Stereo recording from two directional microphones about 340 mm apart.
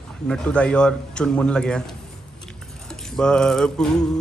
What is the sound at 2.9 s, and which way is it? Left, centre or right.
Mantra, centre.